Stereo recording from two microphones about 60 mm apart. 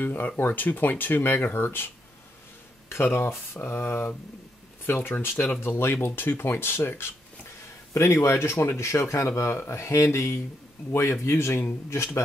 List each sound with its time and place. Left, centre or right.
0.0 s speech: left
2.9 s speech: left